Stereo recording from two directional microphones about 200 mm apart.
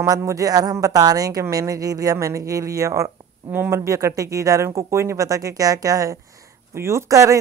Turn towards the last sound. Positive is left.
turn(degrees=-15)  # may be behind; listen again after turning